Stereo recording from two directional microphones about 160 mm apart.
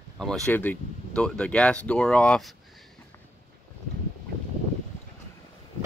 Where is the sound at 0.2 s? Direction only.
10° left (ahead or behind).